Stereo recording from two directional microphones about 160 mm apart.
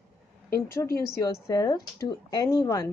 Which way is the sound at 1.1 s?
20° left (ahead or behind).